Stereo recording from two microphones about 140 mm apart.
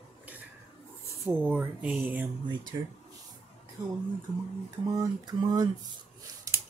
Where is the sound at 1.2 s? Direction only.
15° right (ahead or behind).